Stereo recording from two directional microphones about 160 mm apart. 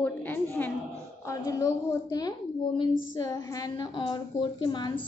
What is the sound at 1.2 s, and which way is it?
A woman's voice, 20° left (ahead or behind).